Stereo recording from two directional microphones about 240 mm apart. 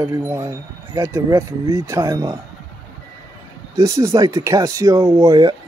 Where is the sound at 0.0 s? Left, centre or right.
Centre.